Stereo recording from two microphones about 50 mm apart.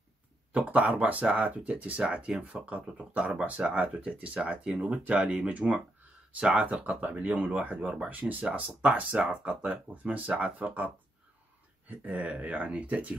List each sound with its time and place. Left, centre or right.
0.5 s speech: right
9.6 s speech: right
11.9 s speech: right